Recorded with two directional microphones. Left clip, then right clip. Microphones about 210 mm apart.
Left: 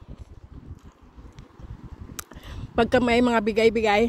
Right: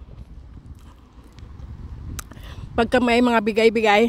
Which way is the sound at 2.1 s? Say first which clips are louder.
Right 1 dB; 5° right (ahead or behind).